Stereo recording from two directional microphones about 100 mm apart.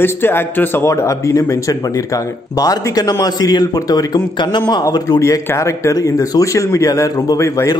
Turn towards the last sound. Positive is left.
turn(degrees=30)  # may be behind; listen again after turning